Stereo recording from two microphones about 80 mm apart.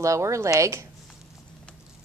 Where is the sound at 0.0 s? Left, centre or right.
Right.